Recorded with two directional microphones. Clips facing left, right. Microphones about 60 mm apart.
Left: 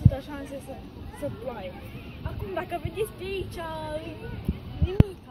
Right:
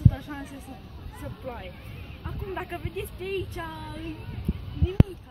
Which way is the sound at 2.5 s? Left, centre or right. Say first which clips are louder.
Left 2 dB; centre.